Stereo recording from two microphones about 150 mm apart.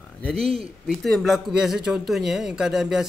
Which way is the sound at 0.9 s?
Centre (ahead or behind).